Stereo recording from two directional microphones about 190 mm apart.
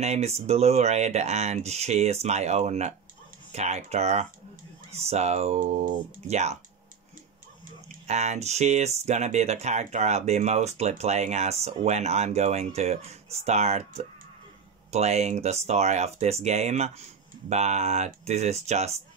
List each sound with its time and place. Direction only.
0.0 s speech: 35° right (ahead or behind)
8.1 s speech: 35° right (ahead or behind)